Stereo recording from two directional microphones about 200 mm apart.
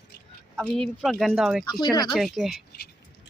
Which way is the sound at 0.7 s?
5° left (ahead or behind).